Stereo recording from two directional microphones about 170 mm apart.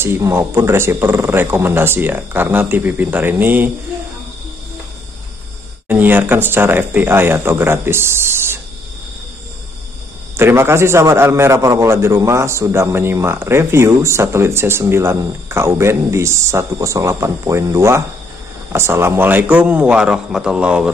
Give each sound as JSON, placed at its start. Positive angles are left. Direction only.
{"t": 0.0, "sound": "a man's voice", "side_deg": -15}
{"t": 5.9, "sound": "a man's voice", "side_deg": -10}
{"t": 10.3, "sound": "a man's voice", "side_deg": -15}